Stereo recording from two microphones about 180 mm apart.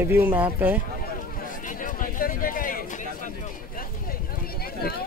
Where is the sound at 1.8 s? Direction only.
50° left (ahead or behind).